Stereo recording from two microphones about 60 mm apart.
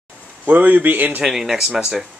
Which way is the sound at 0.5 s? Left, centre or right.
Right.